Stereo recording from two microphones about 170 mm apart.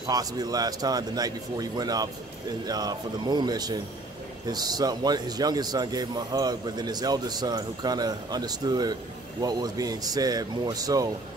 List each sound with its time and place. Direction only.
0.0 s a man's voice: 20° right (ahead or behind)